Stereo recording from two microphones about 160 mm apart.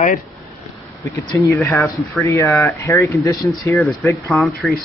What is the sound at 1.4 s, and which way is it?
Speech, 15° left (ahead or behind).